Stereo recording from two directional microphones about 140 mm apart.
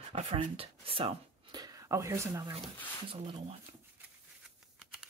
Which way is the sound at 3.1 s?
40° right (ahead or behind).